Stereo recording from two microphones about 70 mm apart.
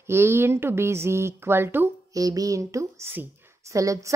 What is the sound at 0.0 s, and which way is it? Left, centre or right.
Speech, right.